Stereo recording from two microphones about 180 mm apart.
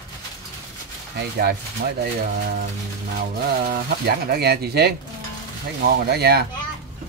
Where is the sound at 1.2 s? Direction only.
60° right (ahead or behind).